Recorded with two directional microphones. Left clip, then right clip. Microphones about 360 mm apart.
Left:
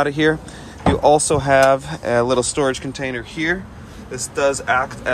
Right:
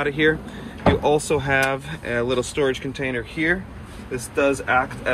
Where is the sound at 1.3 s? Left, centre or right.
Centre.